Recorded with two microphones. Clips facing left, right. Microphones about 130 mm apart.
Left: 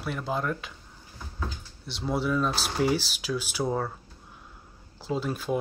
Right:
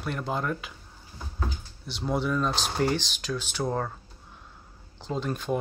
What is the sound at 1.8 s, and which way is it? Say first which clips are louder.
Speech: even; centre (ahead or behind).